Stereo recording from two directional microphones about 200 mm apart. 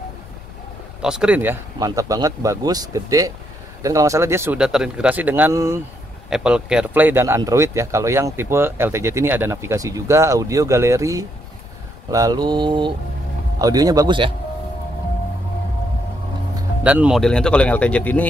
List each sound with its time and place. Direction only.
1.0 s speech: 5° right (ahead or behind)
12.1 s mantra: 20° right (ahead or behind)
16.8 s speech: 5° right (ahead or behind)